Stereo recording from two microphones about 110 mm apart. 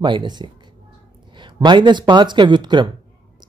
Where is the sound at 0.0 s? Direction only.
45° right (ahead or behind).